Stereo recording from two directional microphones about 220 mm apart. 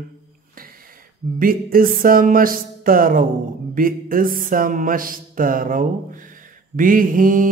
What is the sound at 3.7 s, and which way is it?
Speech, 40° right (ahead or behind).